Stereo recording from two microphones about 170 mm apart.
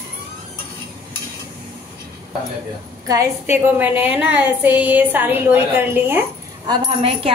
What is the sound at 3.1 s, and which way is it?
A woman's voice, 15° right (ahead or behind).